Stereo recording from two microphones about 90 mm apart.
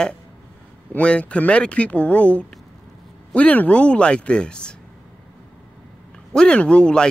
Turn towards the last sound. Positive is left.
turn(degrees=10)  # may be behind; listen again after turning